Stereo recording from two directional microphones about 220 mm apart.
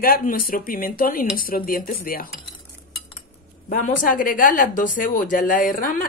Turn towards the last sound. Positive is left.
turn(degrees=40)  # may be behind; listen again after turning